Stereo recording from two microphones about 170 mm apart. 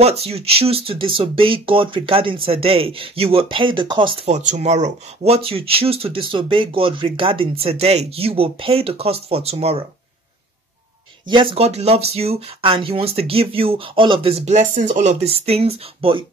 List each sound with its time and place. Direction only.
0.0 s speech: 35° right (ahead or behind)
11.2 s speech: 35° right (ahead or behind)